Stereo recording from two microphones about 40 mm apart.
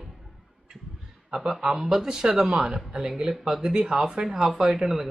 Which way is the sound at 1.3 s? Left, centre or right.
Centre.